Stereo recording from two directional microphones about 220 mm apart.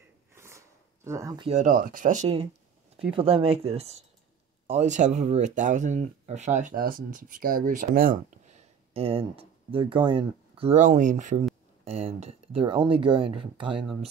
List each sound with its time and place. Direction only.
0.3 s speech: 10° right (ahead or behind)